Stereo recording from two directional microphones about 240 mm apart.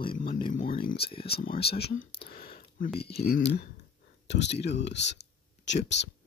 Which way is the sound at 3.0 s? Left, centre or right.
Left.